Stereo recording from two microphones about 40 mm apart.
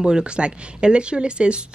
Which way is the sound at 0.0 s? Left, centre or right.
Right.